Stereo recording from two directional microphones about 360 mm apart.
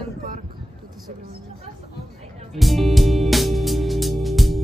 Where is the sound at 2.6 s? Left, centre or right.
Centre.